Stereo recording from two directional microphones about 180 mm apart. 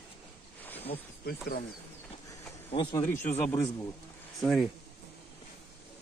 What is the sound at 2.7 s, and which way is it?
Speech, 25° left (ahead or behind).